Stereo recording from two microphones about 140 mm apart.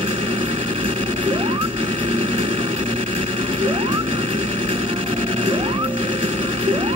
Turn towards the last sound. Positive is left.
turn(degrees=-40)  # may be behind; listen again after turning